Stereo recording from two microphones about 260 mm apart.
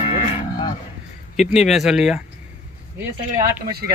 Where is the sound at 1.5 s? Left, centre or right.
Centre.